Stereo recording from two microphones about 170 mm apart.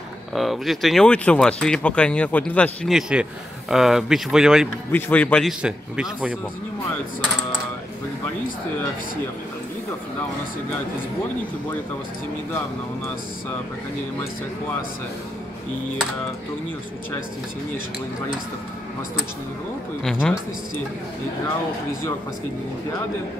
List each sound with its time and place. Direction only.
0.3 s speech: centre (ahead or behind)
4.9 s speech: 10° left (ahead or behind)
20.0 s speech: 5° left (ahead or behind)